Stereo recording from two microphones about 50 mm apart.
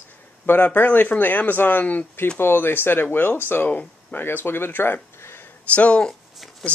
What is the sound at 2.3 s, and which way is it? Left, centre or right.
Speech, left.